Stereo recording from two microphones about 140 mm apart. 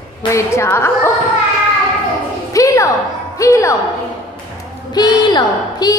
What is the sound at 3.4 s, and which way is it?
Speech, 20° left (ahead or behind).